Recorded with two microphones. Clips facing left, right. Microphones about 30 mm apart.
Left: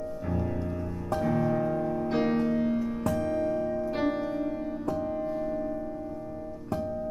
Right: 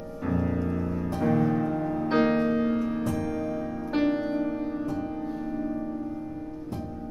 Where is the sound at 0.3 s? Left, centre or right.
Centre.